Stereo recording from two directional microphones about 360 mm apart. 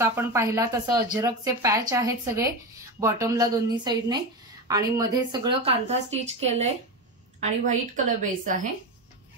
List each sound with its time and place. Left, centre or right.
0.0 s a woman's voice: centre